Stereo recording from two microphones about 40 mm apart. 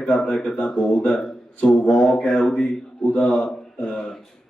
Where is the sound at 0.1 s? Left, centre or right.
Centre.